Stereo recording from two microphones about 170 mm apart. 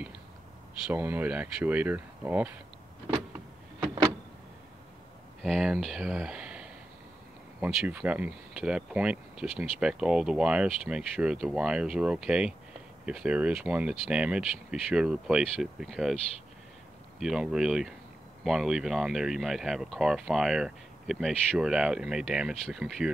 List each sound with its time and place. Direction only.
0.8 s speech: 10° right (ahead or behind)
3.8 s power windows: 30° right (ahead or behind)
5.4 s speech: centre (ahead or behind)
17.2 s speech: 5° right (ahead or behind)